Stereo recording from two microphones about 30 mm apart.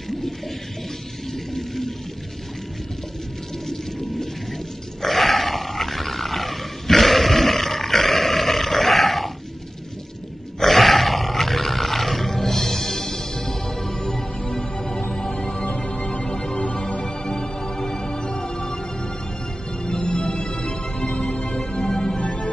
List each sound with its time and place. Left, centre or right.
1.3 s whale vocalization: centre
3.6 s a sound: centre
5.0 s roar: centre
10.6 s roar: centre; by 15.0 s left
15.7 s music: left
16.3 s music: centre
19.8 s music: left
22.0 s music: left